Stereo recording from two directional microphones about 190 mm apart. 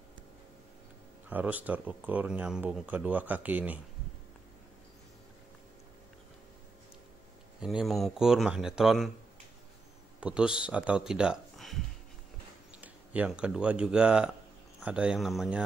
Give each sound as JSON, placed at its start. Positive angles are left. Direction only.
{"t": 1.3, "sound": "speech", "side_deg": -10}
{"t": 7.6, "sound": "speech", "side_deg": 0}
{"t": 10.2, "sound": "speech", "side_deg": -5}
{"t": 12.8, "sound": "speech", "side_deg": -5}